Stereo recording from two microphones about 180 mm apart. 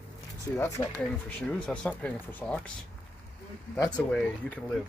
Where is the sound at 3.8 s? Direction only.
10° left (ahead or behind).